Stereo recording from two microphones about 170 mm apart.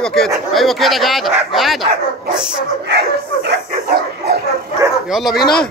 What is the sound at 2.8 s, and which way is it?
Bow-wow, 70° right (ahead or behind).